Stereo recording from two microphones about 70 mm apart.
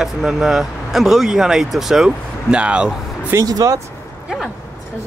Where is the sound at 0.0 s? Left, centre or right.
Centre.